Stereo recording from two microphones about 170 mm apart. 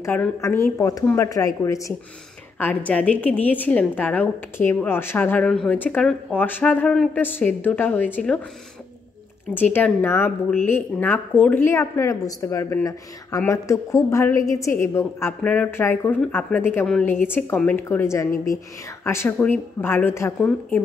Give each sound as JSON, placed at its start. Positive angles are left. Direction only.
{"t": 0.0, "sound": "a woman's voice", "side_deg": 15}
{"t": 9.5, "sound": "a woman's voice", "side_deg": 10}